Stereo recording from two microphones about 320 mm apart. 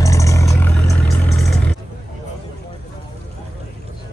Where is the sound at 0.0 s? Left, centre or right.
Centre.